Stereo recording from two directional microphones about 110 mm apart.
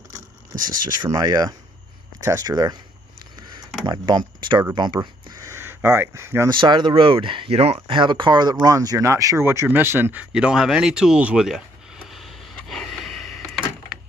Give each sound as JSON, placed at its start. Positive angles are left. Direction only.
{"t": 0.5, "sound": "speech", "side_deg": -30}
{"t": 3.8, "sound": "speech", "side_deg": -40}
{"t": 5.4, "sound": "speech", "side_deg": -25}
{"t": 6.6, "sound": "speech", "side_deg": -45}
{"t": 8.0, "sound": "speech", "side_deg": -45}
{"t": 10.3, "sound": "speech", "side_deg": -5}
{"t": 12.1, "sound": "door", "side_deg": 0}